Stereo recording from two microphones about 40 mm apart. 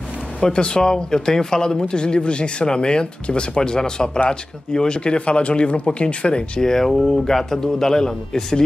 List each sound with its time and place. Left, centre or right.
0.4 s a man's voice: left
6.6 s a man's voice: centre